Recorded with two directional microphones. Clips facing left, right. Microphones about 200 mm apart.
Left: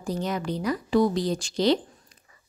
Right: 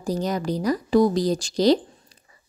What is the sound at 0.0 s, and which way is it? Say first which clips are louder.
A woman's voice: right 4 dB; 40° right (ahead or behind).